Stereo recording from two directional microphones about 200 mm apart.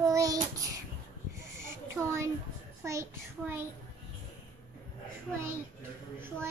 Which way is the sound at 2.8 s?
15° right (ahead or behind).